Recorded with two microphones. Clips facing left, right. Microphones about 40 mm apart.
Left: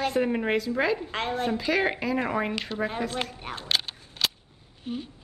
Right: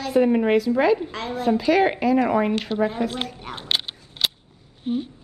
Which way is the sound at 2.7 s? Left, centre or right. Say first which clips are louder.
Right 8 dB; right.